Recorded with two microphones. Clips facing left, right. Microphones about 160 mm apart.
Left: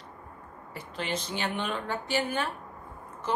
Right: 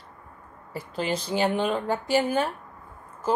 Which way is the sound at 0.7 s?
35° right (ahead or behind).